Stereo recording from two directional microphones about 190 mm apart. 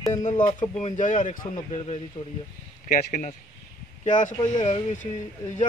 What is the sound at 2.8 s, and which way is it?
A man's voice, 45° left (ahead or behind).